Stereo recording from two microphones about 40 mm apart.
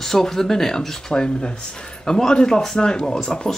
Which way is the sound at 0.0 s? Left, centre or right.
Centre.